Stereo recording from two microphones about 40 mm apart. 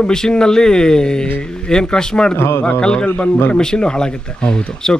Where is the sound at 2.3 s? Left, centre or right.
Left.